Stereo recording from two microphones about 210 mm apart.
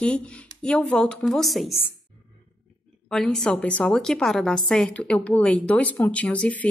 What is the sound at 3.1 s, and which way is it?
A woman's voice, 5° left (ahead or behind).